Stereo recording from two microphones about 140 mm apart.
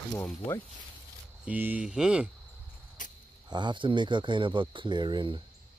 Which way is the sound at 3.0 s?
65° left (ahead or behind).